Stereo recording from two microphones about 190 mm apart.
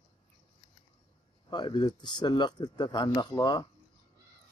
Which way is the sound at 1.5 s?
25° left (ahead or behind).